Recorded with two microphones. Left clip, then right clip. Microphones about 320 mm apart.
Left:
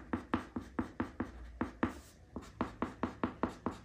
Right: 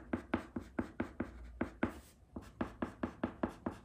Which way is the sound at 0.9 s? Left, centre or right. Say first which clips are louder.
Left 2 dB; centre.